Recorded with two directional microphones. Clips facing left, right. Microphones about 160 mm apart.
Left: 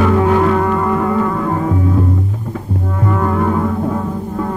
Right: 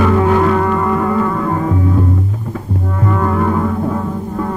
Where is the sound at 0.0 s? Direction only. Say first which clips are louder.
Even; 20° left (ahead or behind).